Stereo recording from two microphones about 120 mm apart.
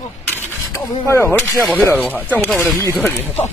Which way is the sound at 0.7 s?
20° left (ahead or behind).